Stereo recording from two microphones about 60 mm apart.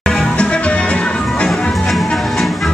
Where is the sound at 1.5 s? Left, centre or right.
Centre.